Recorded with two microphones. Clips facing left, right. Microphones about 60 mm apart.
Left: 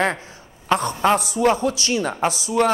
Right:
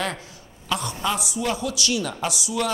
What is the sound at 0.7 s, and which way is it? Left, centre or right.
A man's voice, left.